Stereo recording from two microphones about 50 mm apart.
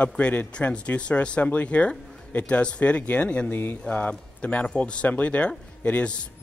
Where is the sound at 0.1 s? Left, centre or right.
Left.